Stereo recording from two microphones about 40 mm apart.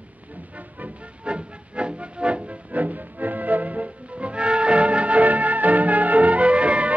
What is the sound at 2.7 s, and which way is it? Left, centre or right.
Music, right.